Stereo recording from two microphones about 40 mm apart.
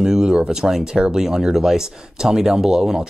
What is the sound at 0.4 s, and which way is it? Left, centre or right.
Speech, centre.